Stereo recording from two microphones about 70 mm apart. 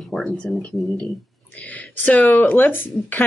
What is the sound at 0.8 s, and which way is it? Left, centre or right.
Speech, left.